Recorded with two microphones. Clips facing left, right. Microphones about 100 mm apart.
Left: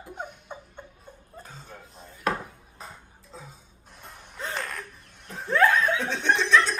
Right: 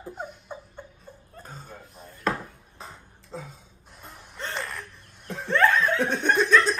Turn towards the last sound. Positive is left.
turn(degrees=-45)  # may be behind; listen again after turning